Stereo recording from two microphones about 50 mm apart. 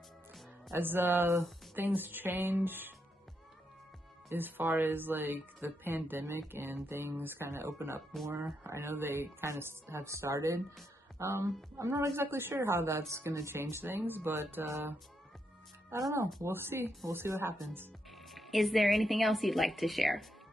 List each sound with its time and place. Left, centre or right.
0.7 s speech: right
4.3 s speech: right
12.2 s speech: right
13.1 s speech: right
13.6 s speech: right
15.9 s speech: right
16.4 s speech: right
18.3 s a woman's voice: centre